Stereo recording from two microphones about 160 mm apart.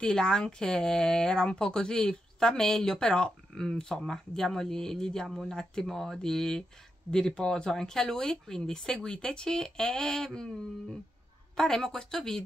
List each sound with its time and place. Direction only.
0.0 s speech: 5° left (ahead or behind)